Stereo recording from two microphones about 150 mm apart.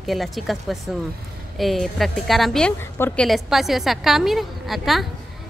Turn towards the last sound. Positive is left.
turn(degrees=0)  # may be behind; listen again after turning